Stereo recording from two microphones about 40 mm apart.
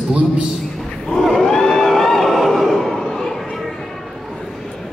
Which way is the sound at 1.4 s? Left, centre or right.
Centre.